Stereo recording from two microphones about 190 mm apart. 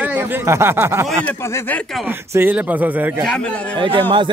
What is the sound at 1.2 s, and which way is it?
Speech, 10° left (ahead or behind).